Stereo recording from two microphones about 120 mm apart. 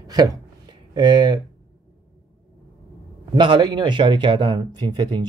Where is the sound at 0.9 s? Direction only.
40° right (ahead or behind).